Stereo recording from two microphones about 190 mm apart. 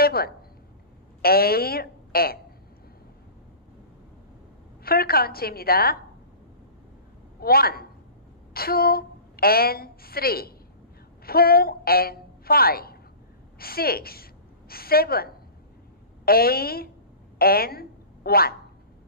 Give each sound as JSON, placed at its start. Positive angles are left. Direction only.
{"t": 0.0, "sound": "a sound", "side_deg": 55}
{"t": 1.2, "sound": "a woman's voice", "side_deg": 55}
{"t": 4.8, "sound": "a woman's voice", "side_deg": 50}
{"t": 7.3, "sound": "a woman's voice", "side_deg": 50}